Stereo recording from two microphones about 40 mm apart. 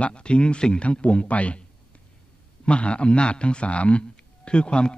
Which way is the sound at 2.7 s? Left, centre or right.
Left.